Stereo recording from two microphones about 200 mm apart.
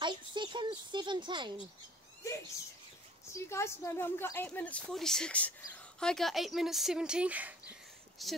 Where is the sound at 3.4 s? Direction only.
15° left (ahead or behind).